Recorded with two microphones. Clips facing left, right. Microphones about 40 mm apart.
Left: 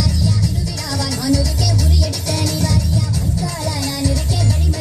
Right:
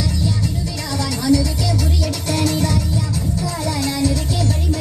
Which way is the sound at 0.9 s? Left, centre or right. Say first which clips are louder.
Right 2 dB; right.